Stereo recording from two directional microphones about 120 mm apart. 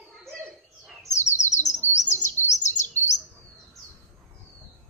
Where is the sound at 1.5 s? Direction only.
70° left (ahead or behind).